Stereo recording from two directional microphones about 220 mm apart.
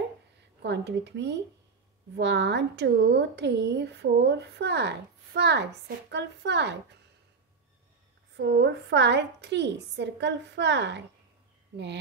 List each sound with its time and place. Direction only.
0.6 s a woman's voice: 50° right (ahead or behind)
8.4 s a woman's voice: 50° right (ahead or behind)